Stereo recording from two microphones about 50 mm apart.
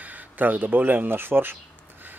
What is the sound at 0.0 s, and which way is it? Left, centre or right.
Speech, right.